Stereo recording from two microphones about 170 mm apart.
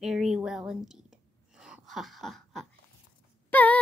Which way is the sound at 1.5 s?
5° right (ahead or behind).